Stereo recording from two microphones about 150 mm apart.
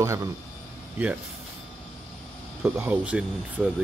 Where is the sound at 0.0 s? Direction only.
20° right (ahead or behind).